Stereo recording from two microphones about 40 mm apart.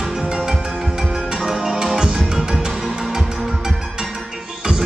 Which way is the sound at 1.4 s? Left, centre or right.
Centre.